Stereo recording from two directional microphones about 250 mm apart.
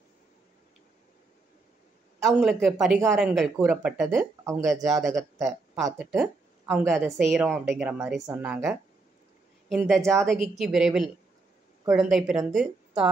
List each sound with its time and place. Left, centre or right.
2.2 s speech: centre
4.8 s speech: centre